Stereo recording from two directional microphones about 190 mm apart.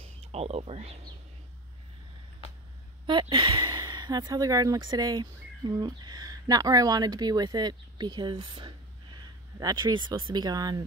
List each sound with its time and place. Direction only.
0.0 s speech: 35° right (ahead or behind)
3.1 s speech: 25° right (ahead or behind)